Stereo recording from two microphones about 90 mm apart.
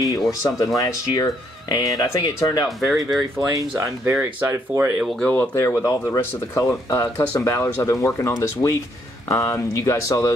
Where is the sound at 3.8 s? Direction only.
25° right (ahead or behind).